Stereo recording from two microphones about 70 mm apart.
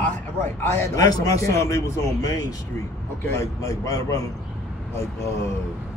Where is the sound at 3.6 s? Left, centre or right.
Left.